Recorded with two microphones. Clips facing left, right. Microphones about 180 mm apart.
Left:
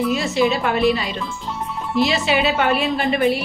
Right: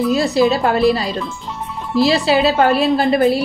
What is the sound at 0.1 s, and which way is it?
A woman's voice, 35° right (ahead or behind).